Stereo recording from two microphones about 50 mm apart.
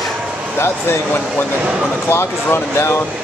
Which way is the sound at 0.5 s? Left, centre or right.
Left.